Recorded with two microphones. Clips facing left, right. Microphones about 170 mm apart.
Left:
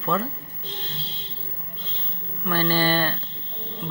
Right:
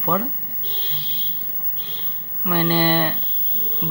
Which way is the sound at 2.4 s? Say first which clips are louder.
Right 3 dB; 15° right (ahead or behind).